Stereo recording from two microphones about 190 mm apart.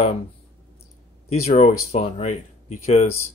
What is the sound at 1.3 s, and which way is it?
Speech, 35° left (ahead or behind).